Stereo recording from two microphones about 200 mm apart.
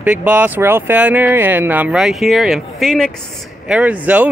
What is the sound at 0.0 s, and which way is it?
Speech, 10° right (ahead or behind).